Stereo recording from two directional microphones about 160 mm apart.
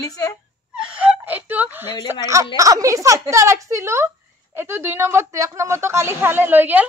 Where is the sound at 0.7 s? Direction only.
5° right (ahead or behind).